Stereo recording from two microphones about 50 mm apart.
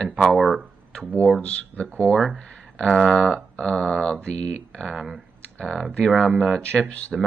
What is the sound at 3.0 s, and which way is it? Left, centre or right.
Speech, centre.